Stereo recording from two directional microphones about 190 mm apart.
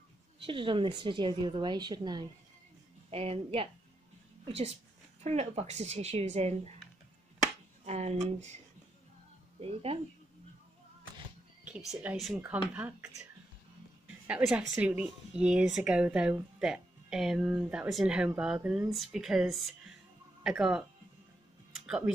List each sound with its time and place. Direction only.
0.4 s a woman's voice: 25° right (ahead or behind)
7.8 s speech: 35° right (ahead or behind)
9.6 s speech: 30° right (ahead or behind)
11.6 s speech: 5° right (ahead or behind)
21.8 s speech: 5° right (ahead or behind)